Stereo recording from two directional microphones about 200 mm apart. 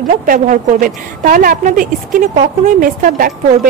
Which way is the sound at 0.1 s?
40° right (ahead or behind).